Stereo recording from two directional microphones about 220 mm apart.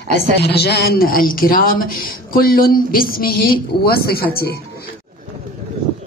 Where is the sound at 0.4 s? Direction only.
50° left (ahead or behind).